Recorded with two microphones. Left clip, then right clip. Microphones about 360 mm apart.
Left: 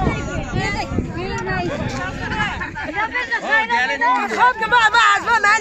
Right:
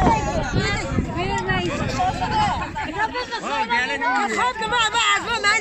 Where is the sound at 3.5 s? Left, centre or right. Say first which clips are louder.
Left 4 dB; left.